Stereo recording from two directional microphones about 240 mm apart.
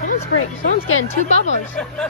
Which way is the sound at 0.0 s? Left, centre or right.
Left.